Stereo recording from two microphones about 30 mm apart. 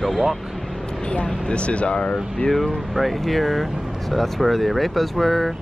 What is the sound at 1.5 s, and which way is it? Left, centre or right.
Speech, left.